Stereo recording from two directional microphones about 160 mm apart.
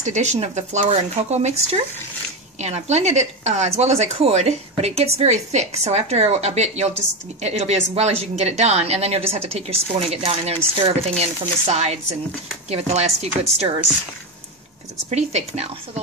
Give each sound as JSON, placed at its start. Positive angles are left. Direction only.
{"t": 0.0, "sound": "speech", "side_deg": -45}
{"t": 15.0, "sound": "speech", "side_deg": -45}